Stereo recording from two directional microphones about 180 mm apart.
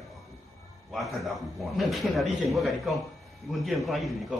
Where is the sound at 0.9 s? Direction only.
Centre (ahead or behind).